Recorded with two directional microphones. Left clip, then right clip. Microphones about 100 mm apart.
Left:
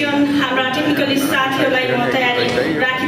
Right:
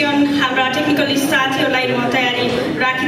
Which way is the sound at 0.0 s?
35° right (ahead or behind).